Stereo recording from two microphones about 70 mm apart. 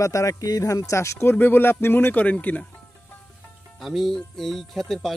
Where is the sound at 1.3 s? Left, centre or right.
Left.